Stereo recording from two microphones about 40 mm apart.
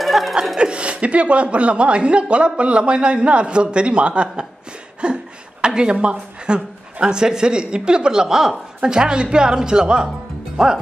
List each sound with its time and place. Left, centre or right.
0.0 s chuckle: centre
0.6 s a woman's voice: right
5.0 s a sound: right
5.7 s a woman's voice: right